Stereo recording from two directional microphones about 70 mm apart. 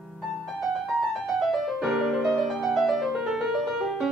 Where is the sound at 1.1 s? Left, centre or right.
Centre.